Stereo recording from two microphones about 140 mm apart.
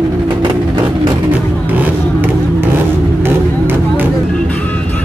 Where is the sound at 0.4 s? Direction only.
35° right (ahead or behind).